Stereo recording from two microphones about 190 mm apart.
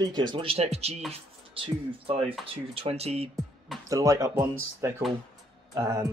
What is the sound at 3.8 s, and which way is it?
Speech, 15° right (ahead or behind).